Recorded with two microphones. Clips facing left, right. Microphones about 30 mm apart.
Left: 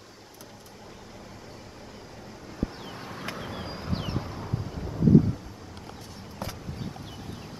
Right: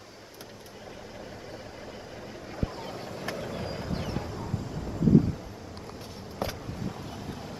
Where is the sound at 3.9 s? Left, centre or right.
Left.